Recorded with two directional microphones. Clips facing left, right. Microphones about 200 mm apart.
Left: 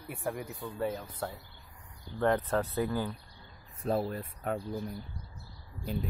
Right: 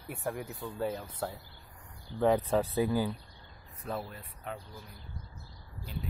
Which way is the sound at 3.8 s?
35° left (ahead or behind).